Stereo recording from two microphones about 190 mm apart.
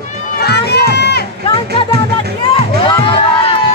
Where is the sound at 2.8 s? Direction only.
25° left (ahead or behind).